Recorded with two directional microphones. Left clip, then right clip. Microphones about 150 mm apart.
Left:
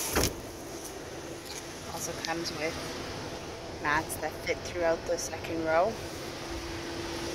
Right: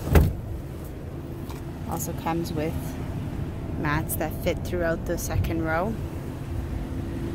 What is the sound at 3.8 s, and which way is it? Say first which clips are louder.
Speech: right 1 dB; 30° right (ahead or behind).